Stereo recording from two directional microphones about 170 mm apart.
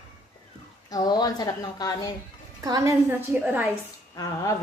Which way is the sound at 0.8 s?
25° left (ahead or behind).